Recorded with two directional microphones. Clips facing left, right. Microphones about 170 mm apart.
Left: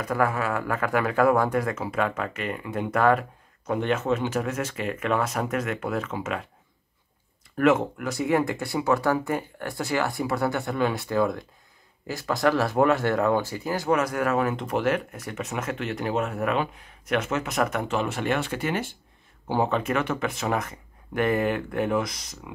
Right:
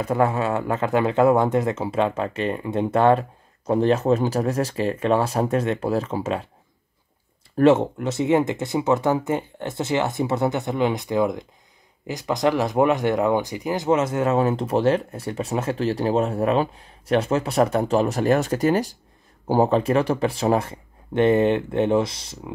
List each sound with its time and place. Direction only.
0.0 s speech: 25° right (ahead or behind)
7.5 s speech: 30° right (ahead or behind)